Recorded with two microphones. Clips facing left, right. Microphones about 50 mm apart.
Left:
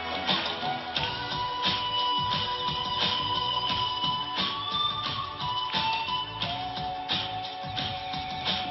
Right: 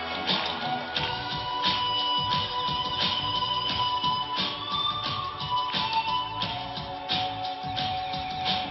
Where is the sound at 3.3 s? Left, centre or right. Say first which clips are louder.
Even; left.